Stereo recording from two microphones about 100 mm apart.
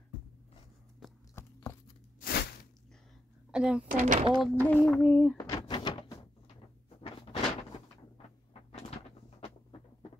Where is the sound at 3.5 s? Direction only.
10° right (ahead or behind).